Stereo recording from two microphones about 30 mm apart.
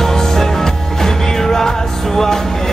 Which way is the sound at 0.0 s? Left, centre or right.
Centre.